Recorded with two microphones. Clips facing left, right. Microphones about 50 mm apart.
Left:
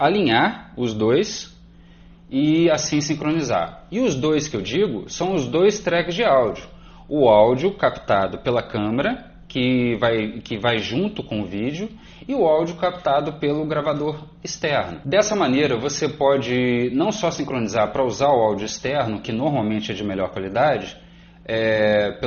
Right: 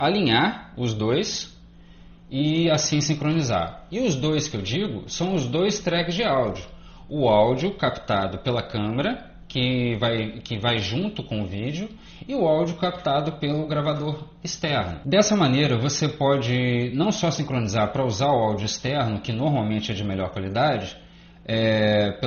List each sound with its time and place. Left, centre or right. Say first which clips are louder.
0.2 s speech: left 3 dB; centre
2.4 s speech: left 4 dB; left
7.3 s speech: left 2 dB; centre
7.7 s speech: left 5 dB; left
9.1 s speech: left 3 dB; left
15.0 s speech: left 1 dB; left